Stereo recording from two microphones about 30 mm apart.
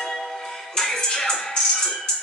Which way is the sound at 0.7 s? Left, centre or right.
Centre.